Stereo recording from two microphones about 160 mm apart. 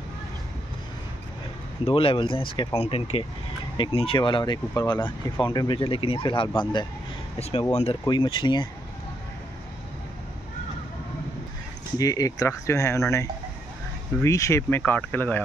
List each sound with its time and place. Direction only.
1.9 s speech: 35° left (ahead or behind)
8.0 s speech: 30° left (ahead or behind)
12.0 s speech: 20° left (ahead or behind)